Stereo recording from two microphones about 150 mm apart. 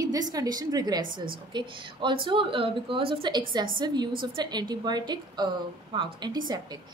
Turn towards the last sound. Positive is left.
turn(degrees=-25)  # may be behind; listen again after turning